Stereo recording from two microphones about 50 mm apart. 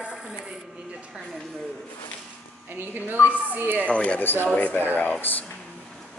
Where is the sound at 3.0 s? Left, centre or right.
Right.